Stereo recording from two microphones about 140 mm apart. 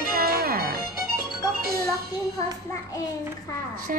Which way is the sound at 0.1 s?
90° right.